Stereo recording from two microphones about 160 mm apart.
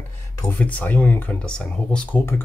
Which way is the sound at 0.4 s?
10° left (ahead or behind).